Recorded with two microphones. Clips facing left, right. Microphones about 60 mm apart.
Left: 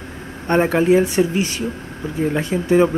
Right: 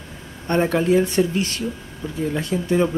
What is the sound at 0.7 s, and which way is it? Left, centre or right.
Speech, left.